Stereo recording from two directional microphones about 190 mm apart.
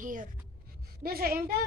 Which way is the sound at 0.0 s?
45° right (ahead or behind).